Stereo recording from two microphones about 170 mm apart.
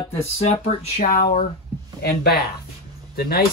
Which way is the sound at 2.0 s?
65° left (ahead or behind).